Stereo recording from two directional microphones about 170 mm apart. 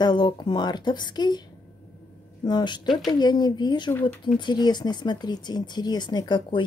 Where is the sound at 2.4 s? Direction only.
25° left (ahead or behind).